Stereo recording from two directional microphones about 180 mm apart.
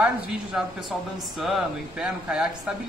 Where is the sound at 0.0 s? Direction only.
10° right (ahead or behind).